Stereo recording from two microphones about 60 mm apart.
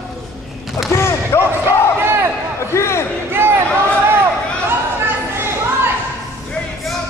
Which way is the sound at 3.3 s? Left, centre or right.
Right.